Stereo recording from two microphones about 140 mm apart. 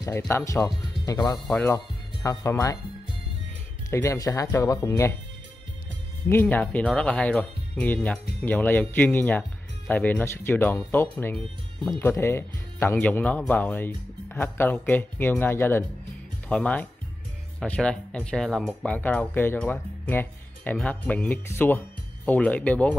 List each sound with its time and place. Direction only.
0.3 s speech: 20° left (ahead or behind)
3.9 s speech: 20° left (ahead or behind)
6.2 s speech: 15° left (ahead or behind)